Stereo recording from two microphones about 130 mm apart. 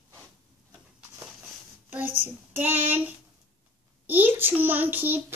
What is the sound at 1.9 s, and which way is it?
Child singing, 15° right (ahead or behind).